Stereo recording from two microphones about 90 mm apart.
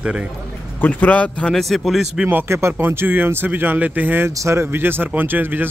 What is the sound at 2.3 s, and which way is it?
Speech, 25° right (ahead or behind).